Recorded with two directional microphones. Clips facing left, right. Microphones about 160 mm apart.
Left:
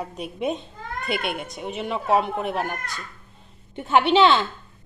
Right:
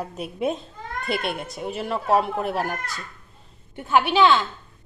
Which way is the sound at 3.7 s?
25° left (ahead or behind).